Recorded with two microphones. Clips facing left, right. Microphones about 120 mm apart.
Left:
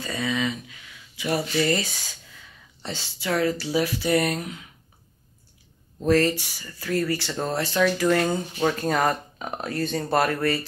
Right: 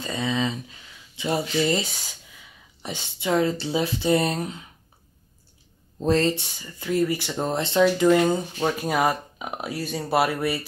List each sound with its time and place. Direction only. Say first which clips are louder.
0.0 s a sound: right 1 dB; 25° right (ahead or behind)
1.6 s speech: even; 20° right (ahead or behind)
5.9 s speech: left 1 dB; 25° right (ahead or behind)